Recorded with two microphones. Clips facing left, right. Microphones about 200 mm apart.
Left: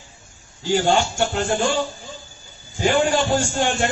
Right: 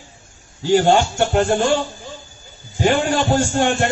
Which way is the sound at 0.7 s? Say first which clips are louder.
Right 4 dB; 55° right (ahead or behind).